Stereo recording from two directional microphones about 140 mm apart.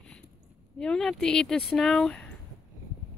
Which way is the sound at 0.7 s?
5° left (ahead or behind).